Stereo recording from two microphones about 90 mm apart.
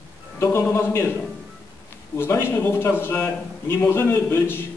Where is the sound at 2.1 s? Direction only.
25° left (ahead or behind).